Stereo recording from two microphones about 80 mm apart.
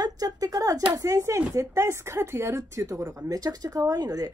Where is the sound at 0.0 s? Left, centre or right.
Right.